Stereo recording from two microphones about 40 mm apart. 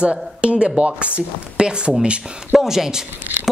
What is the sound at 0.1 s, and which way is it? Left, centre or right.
Speech, right.